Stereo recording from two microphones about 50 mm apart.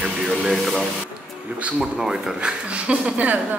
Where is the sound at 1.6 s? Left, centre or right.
Right.